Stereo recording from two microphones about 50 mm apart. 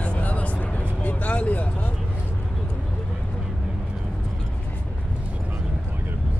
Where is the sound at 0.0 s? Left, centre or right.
Left.